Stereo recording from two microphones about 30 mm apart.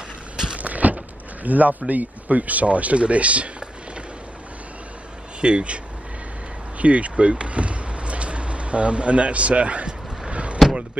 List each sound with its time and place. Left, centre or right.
0.6 s speech: right
5.4 s speech: right
6.8 s speech: right
10.3 s vehicle: right